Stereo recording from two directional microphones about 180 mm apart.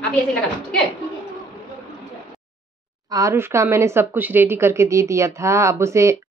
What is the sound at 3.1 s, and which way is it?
A woman's voice, 15° right (ahead or behind).